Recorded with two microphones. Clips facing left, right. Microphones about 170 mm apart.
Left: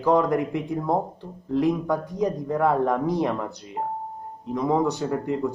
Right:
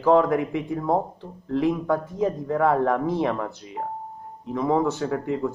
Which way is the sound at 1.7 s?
15° left (ahead or behind).